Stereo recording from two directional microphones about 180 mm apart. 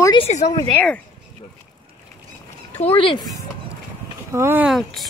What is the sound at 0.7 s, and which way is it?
Speech, 10° left (ahead or behind).